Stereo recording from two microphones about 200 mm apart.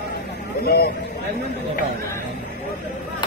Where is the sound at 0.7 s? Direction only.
50° left (ahead or behind).